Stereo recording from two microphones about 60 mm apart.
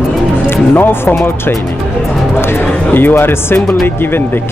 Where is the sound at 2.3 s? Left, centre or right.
Left.